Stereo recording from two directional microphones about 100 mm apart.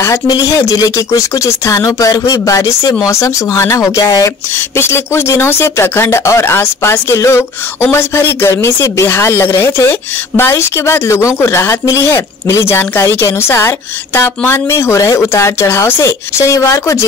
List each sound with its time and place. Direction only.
0.3 s speech: 30° left (ahead or behind)
4.6 s speech: 25° left (ahead or behind)